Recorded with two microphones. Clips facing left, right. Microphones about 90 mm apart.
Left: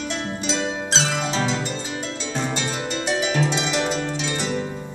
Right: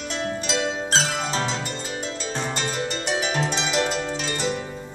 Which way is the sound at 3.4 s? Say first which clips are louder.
Left 1 dB; 45° right (ahead or behind).